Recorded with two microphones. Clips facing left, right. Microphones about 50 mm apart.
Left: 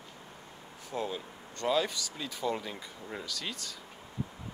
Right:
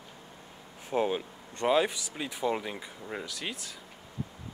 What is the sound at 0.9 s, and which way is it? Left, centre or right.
Speech, right.